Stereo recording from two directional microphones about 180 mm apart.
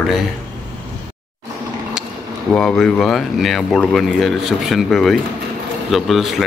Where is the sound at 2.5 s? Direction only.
5° left (ahead or behind).